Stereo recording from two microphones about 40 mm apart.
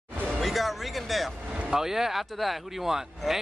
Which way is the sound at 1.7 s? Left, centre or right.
Centre.